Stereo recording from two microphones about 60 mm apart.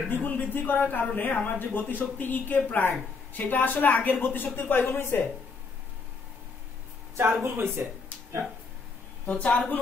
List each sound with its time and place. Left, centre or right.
0.1 s a woman's voice: left
7.2 s speech: right
9.2 s a woman's voice: left